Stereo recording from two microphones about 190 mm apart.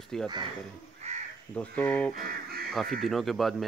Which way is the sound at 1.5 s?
5° left (ahead or behind).